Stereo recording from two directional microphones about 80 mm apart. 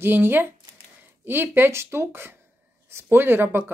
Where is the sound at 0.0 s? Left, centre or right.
Right.